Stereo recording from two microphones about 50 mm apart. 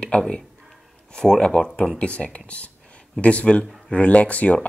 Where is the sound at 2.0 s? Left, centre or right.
Left.